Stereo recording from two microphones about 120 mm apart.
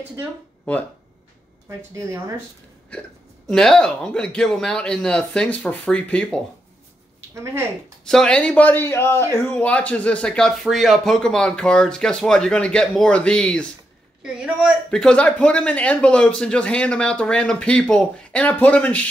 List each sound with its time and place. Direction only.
2.0 s speech: 25° right (ahead or behind)
3.4 s speech: 5° left (ahead or behind)
8.0 s speech: 5° left (ahead or behind)
14.2 s a man's voice: 5° right (ahead or behind)
14.9 s speech: 5° left (ahead or behind)